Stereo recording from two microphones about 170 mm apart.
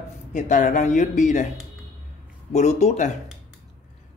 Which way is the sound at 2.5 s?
40° left (ahead or behind).